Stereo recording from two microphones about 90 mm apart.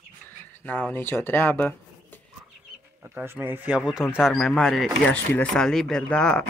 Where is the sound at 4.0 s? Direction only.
5° right (ahead or behind); by 6.5 s 10° left (ahead or behind).